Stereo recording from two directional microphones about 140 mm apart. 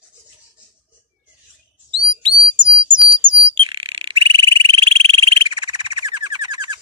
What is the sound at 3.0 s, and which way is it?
Bird, 40° right (ahead or behind).